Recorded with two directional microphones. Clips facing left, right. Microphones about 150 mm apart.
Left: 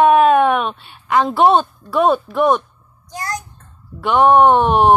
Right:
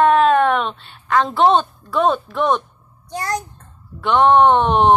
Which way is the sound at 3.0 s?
30° right (ahead or behind).